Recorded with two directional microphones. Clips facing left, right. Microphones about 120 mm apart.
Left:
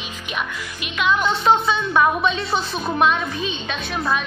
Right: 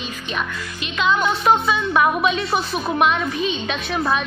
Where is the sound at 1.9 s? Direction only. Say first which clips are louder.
Even; 10° right (ahead or behind).